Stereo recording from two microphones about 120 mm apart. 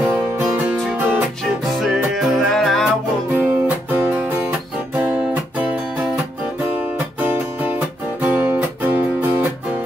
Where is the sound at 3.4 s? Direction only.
15° right (ahead or behind).